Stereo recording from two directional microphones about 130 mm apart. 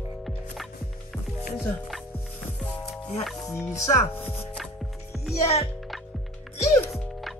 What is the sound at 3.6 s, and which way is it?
Chopping, 25° left (ahead or behind).